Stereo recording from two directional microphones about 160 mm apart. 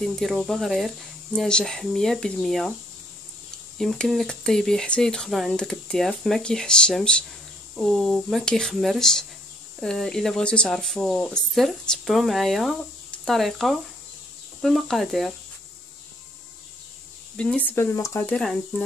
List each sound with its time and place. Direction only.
0.0 s speech: centre (ahead or behind)
3.7 s speech: centre (ahead or behind)
17.4 s speech: 5° left (ahead or behind)
17.7 s speech: 20° left (ahead or behind)
18.3 s speech: 5° left (ahead or behind)